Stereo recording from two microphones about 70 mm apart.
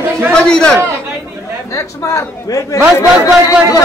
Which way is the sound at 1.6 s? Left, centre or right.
Left.